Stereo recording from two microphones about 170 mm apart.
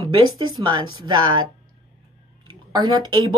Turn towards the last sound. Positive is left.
turn(degrees=-25)  # may be behind; listen again after turning